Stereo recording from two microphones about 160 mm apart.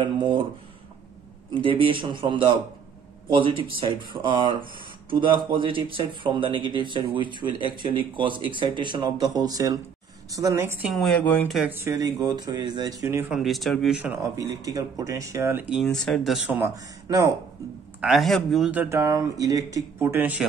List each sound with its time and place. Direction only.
0.0 s speech: 30° right (ahead or behind)
1.5 s speech: 35° right (ahead or behind); by 10.9 s 15° right (ahead or behind)
10.9 s speech: centre (ahead or behind)
11.7 s speech: 15° right (ahead or behind)
13.3 s speech: centre (ahead or behind)
14.6 s speech: 20° right (ahead or behind)
15.8 s speech: 5° left (ahead or behind)
16.6 s speech: 20° right (ahead or behind)
18.0 s speech: centre (ahead or behind)